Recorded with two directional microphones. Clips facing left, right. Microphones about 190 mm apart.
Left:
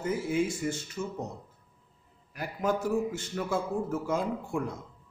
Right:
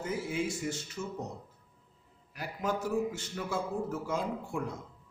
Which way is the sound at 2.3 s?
50° left (ahead or behind).